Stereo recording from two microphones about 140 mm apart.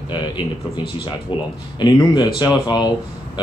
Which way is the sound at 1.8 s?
30° left (ahead or behind).